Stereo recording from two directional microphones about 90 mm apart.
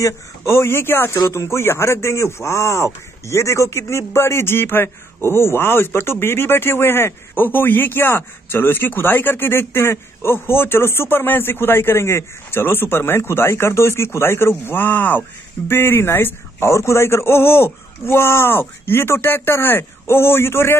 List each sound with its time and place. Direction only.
0.0 s a man's voice: 30° left (ahead or behind)